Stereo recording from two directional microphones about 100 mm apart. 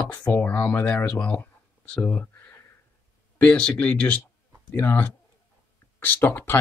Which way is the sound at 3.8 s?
15° left (ahead or behind).